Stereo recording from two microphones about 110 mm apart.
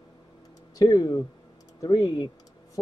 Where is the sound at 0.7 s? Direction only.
35° left (ahead or behind).